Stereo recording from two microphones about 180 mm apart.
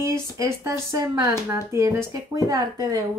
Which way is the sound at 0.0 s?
15° right (ahead or behind).